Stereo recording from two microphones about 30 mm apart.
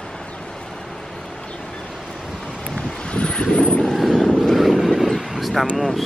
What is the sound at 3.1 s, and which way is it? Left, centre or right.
Vehicle, left.